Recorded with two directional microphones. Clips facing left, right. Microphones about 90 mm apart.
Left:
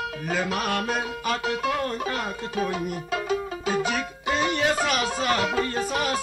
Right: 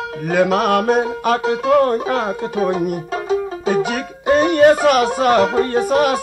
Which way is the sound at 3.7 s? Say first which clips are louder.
Right 7 dB; 55° right (ahead or behind).